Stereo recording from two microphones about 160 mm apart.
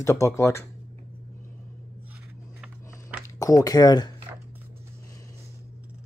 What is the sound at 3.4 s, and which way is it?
Speech, 20° left (ahead or behind).